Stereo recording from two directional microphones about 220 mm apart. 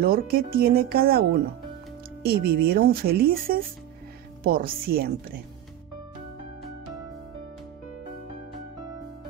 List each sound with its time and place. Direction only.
0.0 s speech: 40° right (ahead or behind)
2.2 s speech: 45° right (ahead or behind)